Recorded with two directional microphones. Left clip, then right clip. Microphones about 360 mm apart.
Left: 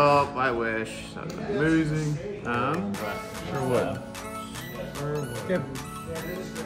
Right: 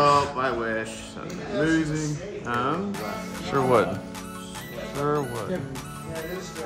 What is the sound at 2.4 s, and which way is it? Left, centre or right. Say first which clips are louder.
Speech: right 1 dB; centre.